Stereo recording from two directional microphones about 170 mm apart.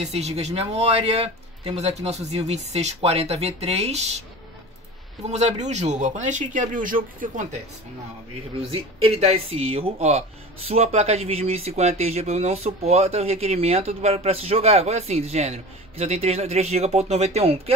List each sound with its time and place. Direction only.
0.0 s speech: 40° right (ahead or behind)
5.3 s speech: 40° right (ahead or behind)
8.6 s speech: 35° right (ahead or behind)